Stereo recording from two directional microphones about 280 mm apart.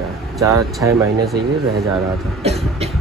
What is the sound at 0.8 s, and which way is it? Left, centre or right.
Speech, centre.